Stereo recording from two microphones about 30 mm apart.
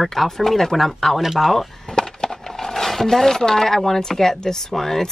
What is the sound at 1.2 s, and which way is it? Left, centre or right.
Speech, centre.